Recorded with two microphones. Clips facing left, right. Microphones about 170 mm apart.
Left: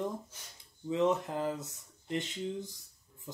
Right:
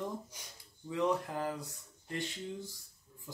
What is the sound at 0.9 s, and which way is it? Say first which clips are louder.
Speech: left 3 dB; 20° left (ahead or behind).